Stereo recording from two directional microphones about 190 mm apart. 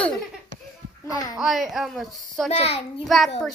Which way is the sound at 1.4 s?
Centre (ahead or behind).